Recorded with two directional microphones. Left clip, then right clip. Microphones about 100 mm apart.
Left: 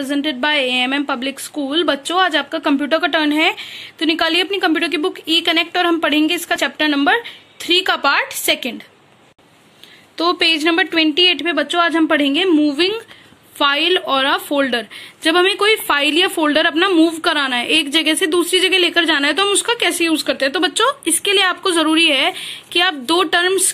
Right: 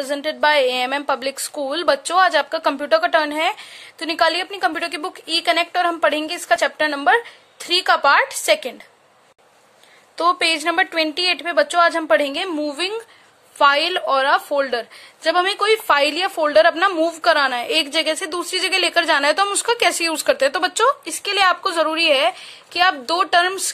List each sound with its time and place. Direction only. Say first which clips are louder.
0.0 s a woman's voice: even; 45° right (ahead or behind)
10.4 s a woman's voice: left 3 dB; 35° right (ahead or behind)
20.0 s speech: left 1 dB; 65° right (ahead or behind)
20.6 s a woman's voice: left 1 dB; 45° right (ahead or behind)
21.8 s a woman's voice: left 2 dB; 25° right (ahead or behind)